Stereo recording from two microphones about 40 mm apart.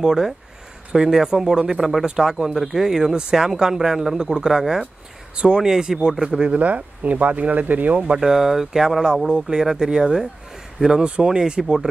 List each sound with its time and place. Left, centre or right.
0.0 s speech: centre
5.3 s speech: right
6.5 s speech: right
8.2 s speech: centre